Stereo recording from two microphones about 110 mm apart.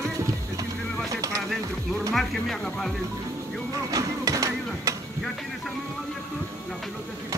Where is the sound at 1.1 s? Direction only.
30° right (ahead or behind).